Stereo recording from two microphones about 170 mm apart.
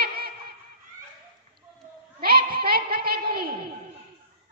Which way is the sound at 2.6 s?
60° right (ahead or behind).